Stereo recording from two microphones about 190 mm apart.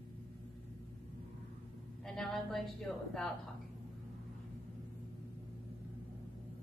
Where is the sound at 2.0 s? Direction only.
Centre (ahead or behind).